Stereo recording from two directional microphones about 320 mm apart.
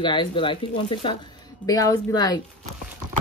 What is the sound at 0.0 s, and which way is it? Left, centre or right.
Speech, centre.